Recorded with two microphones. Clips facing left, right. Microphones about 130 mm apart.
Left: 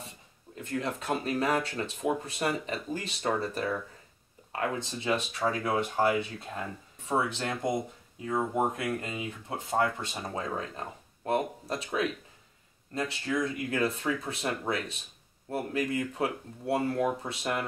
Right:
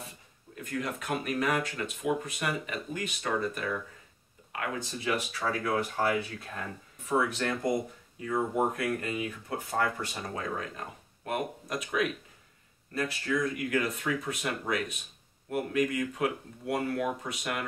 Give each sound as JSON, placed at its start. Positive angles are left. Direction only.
{"t": 0.6, "sound": "speech", "side_deg": 25}